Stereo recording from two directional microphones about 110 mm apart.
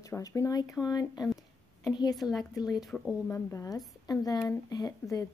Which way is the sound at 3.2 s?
25° left (ahead or behind).